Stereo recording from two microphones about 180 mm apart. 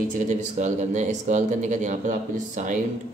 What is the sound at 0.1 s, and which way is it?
Speech, 45° right (ahead or behind).